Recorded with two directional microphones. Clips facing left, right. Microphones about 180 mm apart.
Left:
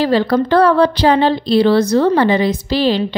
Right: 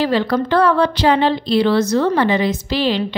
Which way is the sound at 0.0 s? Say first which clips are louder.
Left 3 dB; 35° left (ahead or behind).